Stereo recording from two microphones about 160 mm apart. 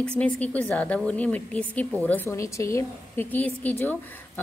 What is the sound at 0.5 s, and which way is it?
Speech, 10° left (ahead or behind).